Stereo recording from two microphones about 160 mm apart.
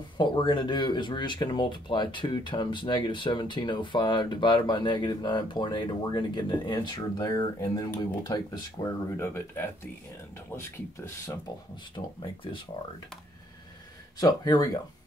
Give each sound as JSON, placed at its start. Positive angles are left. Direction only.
{"t": 0.2, "sound": "speech", "side_deg": 30}
{"t": 11.2, "sound": "speech", "side_deg": 30}
{"t": 14.1, "sound": "speech", "side_deg": 25}